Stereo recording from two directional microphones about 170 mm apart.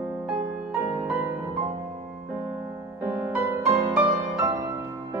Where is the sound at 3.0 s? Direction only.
10° right (ahead or behind).